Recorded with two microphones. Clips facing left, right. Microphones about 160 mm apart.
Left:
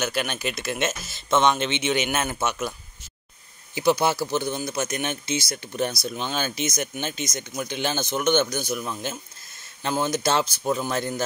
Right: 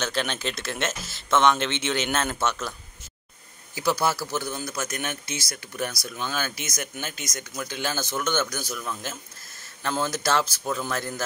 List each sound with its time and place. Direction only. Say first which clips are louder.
0.0 s speech: left 1 dB; 10° left (ahead or behind)
3.7 s speech: left 4 dB; 20° left (ahead or behind)